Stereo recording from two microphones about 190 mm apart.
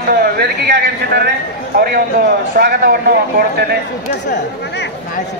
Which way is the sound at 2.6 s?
55° right (ahead or behind).